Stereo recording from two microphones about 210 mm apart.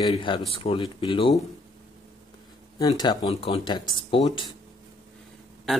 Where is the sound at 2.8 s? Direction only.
20° left (ahead or behind).